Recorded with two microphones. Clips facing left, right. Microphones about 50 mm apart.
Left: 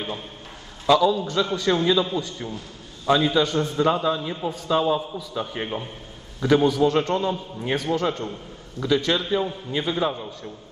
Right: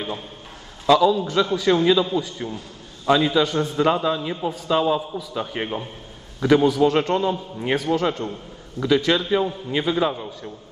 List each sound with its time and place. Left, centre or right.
0.8 s a man's voice: centre
3.1 s a man's voice: centre
3.9 s a man's voice: centre
5.5 s a man's voice: right
6.4 s a man's voice: centre